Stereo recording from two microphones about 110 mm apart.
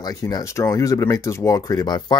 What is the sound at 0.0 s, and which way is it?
Speech, 35° left (ahead or behind).